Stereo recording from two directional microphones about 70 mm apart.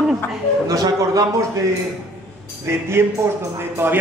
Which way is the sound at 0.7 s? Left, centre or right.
Right.